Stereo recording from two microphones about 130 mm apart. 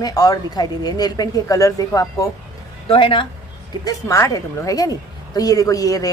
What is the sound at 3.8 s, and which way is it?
A woman's voice, 25° left (ahead or behind).